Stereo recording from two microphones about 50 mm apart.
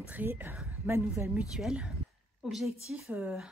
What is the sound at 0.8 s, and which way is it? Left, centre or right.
Speech, right.